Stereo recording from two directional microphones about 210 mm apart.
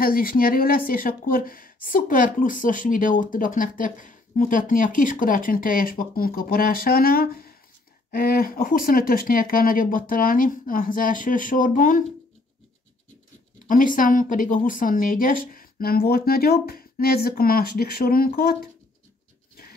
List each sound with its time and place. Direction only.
0.0 s speech: 45° left (ahead or behind)
13.7 s speech: 40° left (ahead or behind)